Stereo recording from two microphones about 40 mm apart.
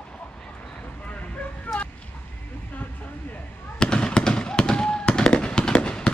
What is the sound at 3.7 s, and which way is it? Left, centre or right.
Fireworks, left.